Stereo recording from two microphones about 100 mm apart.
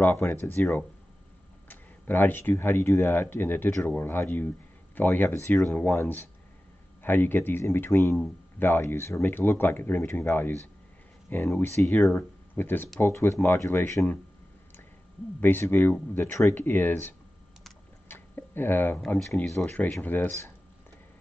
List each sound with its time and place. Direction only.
0.0 s speech: 20° left (ahead or behind)
12.0 s speech: 10° left (ahead or behind)
15.4 s speech: 20° left (ahead or behind)
18.0 s a sound: 20° left (ahead or behind)
18.9 s speech: 5° left (ahead or behind); by 20.5 s 25° left (ahead or behind)